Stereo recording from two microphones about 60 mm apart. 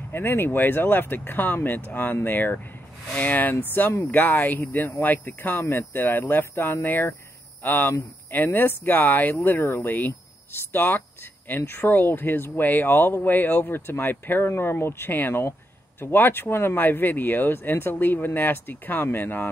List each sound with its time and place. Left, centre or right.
0.1 s speech: left